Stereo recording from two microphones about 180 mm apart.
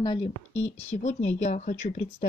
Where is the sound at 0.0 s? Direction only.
25° left (ahead or behind).